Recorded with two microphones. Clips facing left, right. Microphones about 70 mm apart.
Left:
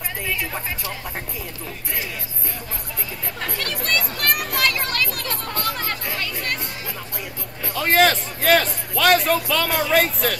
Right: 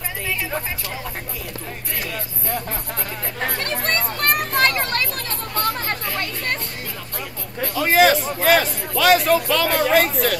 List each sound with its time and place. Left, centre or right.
3.5 s a sound: right
6.1 s chatter: right
7.7 s a man's voice: centre